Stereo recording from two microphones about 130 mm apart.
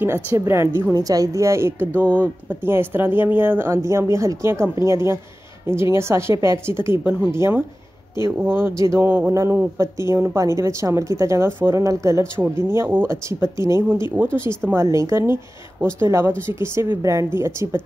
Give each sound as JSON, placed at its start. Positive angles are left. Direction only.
{"t": 0.0, "sound": "speech", "side_deg": -20}